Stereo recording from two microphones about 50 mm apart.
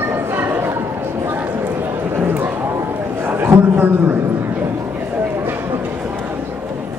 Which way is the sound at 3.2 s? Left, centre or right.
Right.